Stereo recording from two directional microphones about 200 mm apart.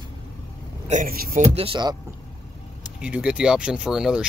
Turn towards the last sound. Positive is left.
turn(degrees=-5)  # may be behind; listen again after turning